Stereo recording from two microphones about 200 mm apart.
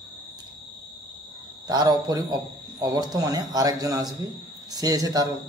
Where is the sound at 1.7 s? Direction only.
20° right (ahead or behind).